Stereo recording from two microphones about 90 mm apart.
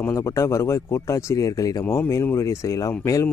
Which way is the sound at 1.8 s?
25° left (ahead or behind).